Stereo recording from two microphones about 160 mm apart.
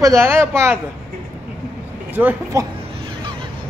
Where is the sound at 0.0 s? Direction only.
15° right (ahead or behind).